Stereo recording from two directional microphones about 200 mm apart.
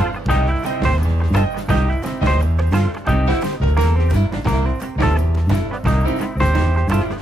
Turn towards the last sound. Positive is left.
turn(degrees=0)  # may be behind; listen again after turning